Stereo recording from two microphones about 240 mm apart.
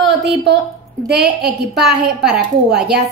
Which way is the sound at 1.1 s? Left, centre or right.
Right.